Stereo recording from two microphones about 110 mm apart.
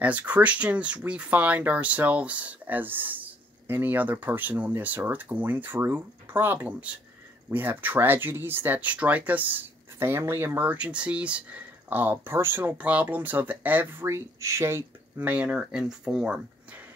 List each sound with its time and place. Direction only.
0.0 s speech: 15° right (ahead or behind)